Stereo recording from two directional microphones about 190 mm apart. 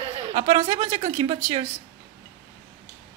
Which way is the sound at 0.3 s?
30° right (ahead or behind).